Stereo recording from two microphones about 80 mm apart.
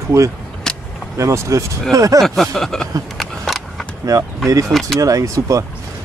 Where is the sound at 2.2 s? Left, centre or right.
Centre.